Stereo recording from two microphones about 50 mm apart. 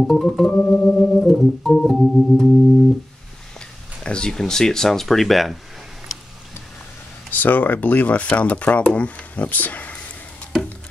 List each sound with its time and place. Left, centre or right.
0.0 s organ: centre
0.6 s organ: left
1.3 s organ: centre
3.5 s speech: centre
7.2 s speech: left
8.3 s organ: left
8.9 s speech: left